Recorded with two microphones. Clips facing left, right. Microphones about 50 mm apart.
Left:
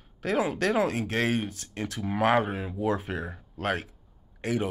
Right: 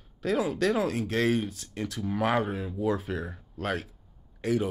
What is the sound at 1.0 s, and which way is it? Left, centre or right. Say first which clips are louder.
Speech: even; left.